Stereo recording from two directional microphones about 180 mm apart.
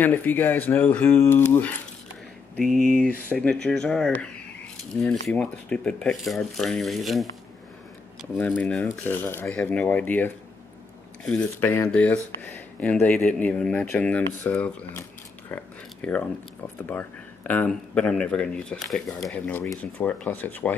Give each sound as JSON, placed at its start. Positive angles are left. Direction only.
{"t": 0.0, "sound": "speech", "side_deg": 10}
{"t": 5.3, "sound": "speech", "side_deg": 5}
{"t": 8.4, "sound": "speech", "side_deg": 10}
{"t": 15.5, "sound": "a sound", "side_deg": 10}
{"t": 16.8, "sound": "speech", "side_deg": 10}